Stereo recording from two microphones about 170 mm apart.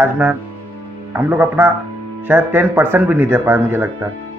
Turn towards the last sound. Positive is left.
turn(degrees=-15)  # may be behind; listen again after turning